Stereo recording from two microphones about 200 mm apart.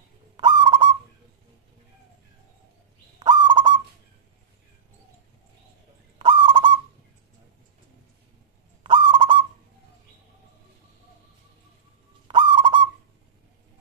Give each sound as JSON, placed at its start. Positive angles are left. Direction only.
{"t": 0.4, "sound": "owl", "side_deg": -25}
{"t": 3.2, "sound": "goose", "side_deg": -20}
{"t": 6.1, "sound": "goose", "side_deg": -25}
{"t": 8.8, "sound": "owl", "side_deg": -25}
{"t": 12.3, "sound": "owl", "side_deg": -25}